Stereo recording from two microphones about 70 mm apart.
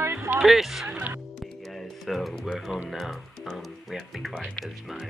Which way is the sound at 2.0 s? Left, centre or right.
Centre.